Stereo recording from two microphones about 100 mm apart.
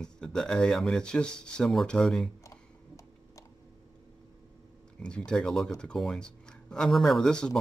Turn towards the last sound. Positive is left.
turn(degrees=5)  # may be behind; listen again after turning